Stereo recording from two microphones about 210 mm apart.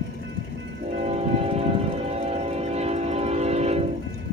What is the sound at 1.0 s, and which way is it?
Train, 30° right (ahead or behind).